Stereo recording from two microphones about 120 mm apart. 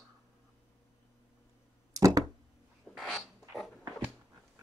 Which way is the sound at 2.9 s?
Centre (ahead or behind).